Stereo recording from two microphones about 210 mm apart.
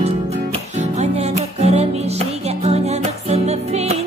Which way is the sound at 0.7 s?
30° right (ahead or behind).